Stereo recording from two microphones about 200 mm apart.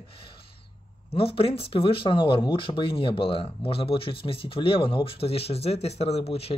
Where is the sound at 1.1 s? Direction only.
30° left (ahead or behind).